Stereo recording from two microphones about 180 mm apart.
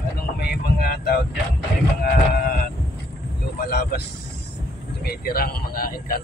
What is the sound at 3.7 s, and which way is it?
Speech, 60° left (ahead or behind).